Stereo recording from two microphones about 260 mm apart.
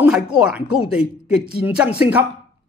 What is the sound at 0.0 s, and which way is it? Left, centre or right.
Speech, centre.